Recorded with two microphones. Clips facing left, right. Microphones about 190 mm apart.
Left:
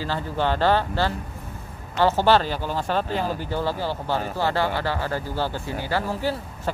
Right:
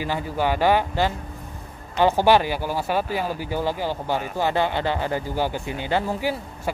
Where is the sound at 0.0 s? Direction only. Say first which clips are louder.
Right 1 dB; 10° right (ahead or behind).